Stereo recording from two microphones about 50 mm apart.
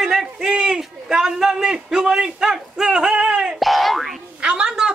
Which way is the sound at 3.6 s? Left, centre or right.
Centre.